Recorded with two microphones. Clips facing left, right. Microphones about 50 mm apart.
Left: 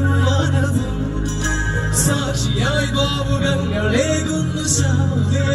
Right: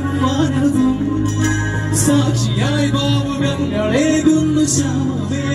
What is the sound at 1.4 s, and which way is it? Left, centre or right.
Music, right.